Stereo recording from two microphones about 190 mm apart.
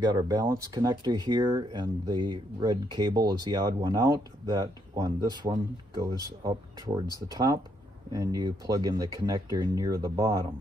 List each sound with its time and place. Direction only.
0.0 s speech: 20° right (ahead or behind)